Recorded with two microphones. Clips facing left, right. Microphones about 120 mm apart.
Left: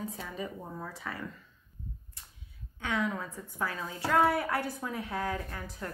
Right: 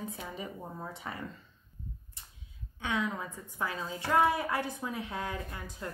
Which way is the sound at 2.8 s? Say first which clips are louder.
Left 1 dB; 15° right (ahead or behind).